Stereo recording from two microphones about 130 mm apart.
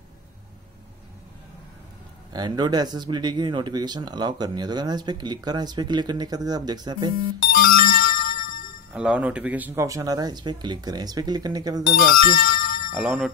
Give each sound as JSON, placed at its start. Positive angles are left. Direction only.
{"t": 2.3, "sound": "speech", "side_deg": -35}
{"t": 7.5, "sound": "music", "side_deg": 90}
{"t": 8.9, "sound": "speech", "side_deg": -10}
{"t": 9.8, "sound": "speech", "side_deg": -25}
{"t": 12.2, "sound": "music", "side_deg": 90}
{"t": 12.9, "sound": "speech", "side_deg": -5}